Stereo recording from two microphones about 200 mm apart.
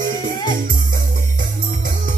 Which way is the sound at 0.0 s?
45° right (ahead or behind).